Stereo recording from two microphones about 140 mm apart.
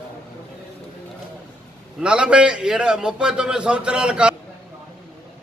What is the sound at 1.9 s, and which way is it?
A man's voice, 5° right (ahead or behind).